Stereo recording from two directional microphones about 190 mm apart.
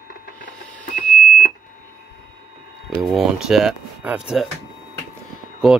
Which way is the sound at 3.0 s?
Centre (ahead or behind).